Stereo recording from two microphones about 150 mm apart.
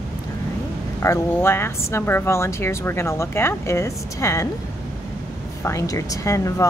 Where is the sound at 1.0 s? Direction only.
15° left (ahead or behind).